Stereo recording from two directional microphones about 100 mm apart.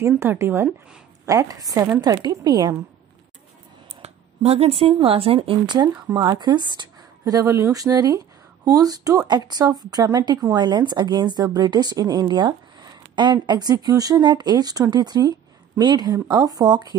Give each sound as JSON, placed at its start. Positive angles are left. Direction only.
{"t": 0.2, "sound": "a woman's voice", "side_deg": -25}
{"t": 1.2, "sound": "a woman's voice", "side_deg": -35}
{"t": 4.0, "sound": "a sound", "side_deg": -90}
{"t": 5.0, "sound": "speech", "side_deg": -70}
{"t": 5.9, "sound": "a woman's voice", "side_deg": -30}
{"t": 6.2, "sound": "a woman's voice", "side_deg": -50}